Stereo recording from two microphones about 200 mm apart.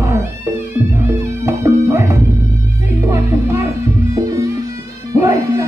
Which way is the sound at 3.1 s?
15° right (ahead or behind).